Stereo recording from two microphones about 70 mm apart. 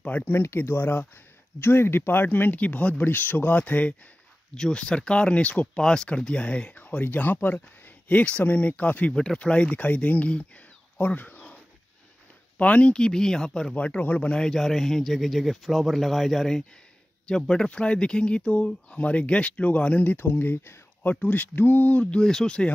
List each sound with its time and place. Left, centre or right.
0.0 s speech: left
0.3 s speech: left
12.5 s speech: left
21.0 s speech: left